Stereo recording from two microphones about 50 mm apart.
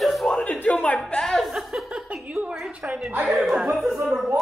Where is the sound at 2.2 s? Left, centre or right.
Right.